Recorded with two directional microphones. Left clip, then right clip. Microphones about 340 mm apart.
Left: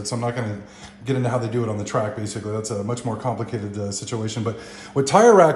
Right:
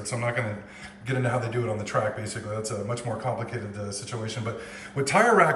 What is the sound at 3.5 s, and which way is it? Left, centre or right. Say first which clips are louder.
Speech: left 6 dB; left.